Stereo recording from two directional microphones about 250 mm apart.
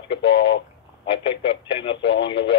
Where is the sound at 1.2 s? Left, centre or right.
Left.